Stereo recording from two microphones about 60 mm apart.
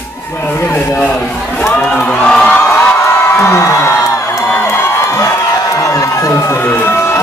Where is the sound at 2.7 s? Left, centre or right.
Left.